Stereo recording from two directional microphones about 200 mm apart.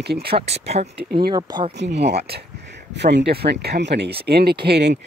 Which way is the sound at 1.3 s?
20° right (ahead or behind).